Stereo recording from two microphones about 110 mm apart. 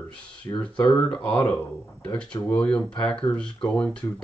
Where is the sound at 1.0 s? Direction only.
10° left (ahead or behind).